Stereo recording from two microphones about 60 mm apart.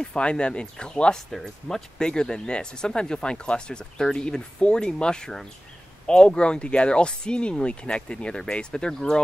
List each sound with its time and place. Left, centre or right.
0.0 s speech: centre